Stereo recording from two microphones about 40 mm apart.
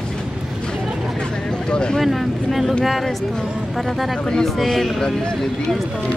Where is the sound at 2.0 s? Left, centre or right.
Centre.